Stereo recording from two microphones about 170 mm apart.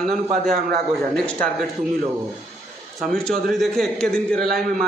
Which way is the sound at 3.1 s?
5° left (ahead or behind).